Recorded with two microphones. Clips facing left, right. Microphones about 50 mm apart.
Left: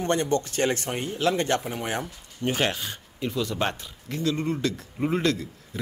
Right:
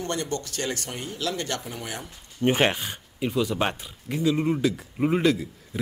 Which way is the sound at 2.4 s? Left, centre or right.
Right.